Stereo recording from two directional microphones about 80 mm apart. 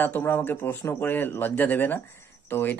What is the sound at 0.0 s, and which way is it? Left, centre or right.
Speech, left.